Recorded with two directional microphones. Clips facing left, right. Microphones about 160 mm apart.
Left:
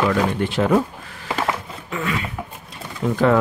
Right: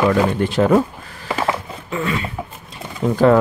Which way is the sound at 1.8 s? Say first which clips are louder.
Right 3 dB; 30° right (ahead or behind).